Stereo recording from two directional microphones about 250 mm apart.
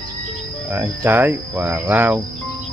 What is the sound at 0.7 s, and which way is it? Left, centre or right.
Speech, centre.